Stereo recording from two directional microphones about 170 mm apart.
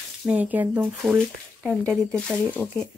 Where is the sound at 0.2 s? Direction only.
5° right (ahead or behind).